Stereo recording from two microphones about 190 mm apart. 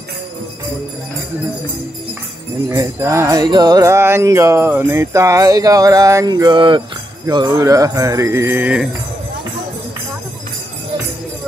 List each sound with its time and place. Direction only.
2.7 s music: 15° right (ahead or behind)